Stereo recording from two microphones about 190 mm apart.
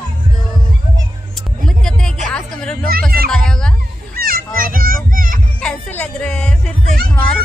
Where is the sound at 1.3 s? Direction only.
5° left (ahead or behind).